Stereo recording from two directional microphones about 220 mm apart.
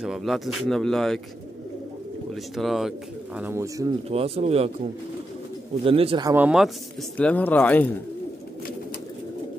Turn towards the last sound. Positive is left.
turn(degrees=5)  # may be behind; listen again after turning